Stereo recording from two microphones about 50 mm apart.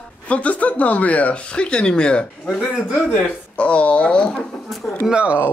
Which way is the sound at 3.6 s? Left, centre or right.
Left.